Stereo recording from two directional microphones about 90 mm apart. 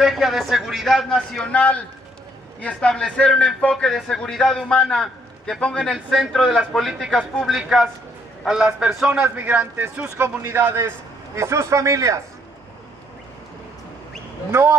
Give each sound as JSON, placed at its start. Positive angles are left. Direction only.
{"t": 0.0, "sound": "a man's voice", "side_deg": 0}
{"t": 9.2, "sound": "speech", "side_deg": -20}
{"t": 14.5, "sound": "speech", "side_deg": -30}